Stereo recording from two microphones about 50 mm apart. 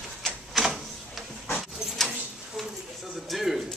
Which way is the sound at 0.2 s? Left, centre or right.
Centre.